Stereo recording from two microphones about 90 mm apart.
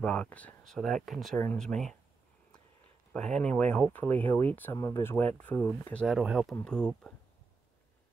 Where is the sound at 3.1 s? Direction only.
10° left (ahead or behind).